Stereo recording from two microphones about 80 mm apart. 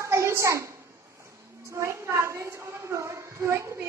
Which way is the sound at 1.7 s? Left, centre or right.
Right.